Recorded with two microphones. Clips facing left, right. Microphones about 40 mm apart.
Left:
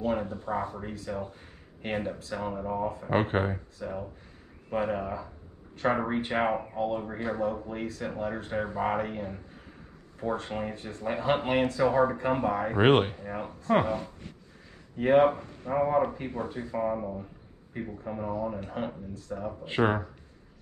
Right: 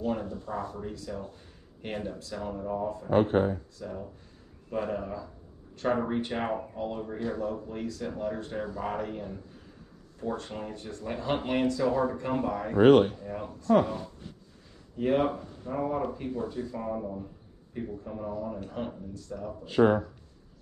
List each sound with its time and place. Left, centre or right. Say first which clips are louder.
0.0 s a sound: left 2 dB; left
0.7 s speech: left 2 dB; left
6.5 s speech: left 3 dB; left
15.0 s speech: left 5 dB; left
15.3 s speech: left 5 dB; left
18.6 s speech: left 2 dB; left